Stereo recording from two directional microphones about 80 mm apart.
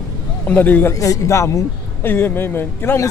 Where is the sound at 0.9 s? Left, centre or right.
Left.